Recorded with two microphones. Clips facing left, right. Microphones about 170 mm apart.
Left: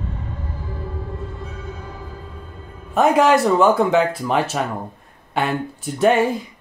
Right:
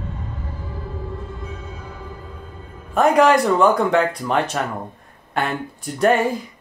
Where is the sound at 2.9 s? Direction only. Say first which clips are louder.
Even; centre (ahead or behind).